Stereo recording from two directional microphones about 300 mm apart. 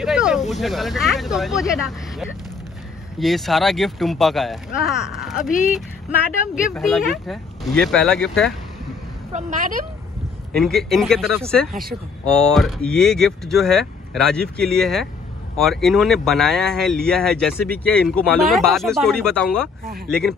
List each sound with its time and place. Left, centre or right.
0.0 s vehicle: centre
0.5 s speech: centre
3.2 s speech: centre
6.6 s speech: centre
9.3 s a woman's voice: right
10.5 s speech: centre